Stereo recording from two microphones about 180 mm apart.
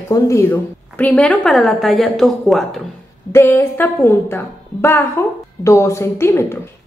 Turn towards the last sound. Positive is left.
turn(degrees=15)  # may be behind; listen again after turning